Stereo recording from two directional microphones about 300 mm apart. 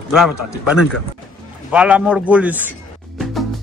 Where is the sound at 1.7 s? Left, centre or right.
Centre.